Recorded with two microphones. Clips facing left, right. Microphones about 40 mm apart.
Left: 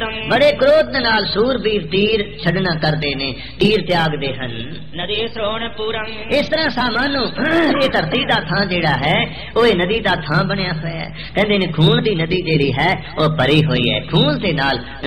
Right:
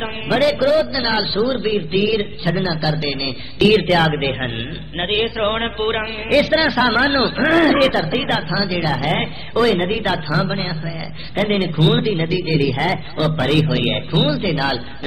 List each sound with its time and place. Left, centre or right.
0.0 s a man's voice: left
3.6 s speech: centre
7.9 s a man's voice: centre
13.2 s a man's voice: left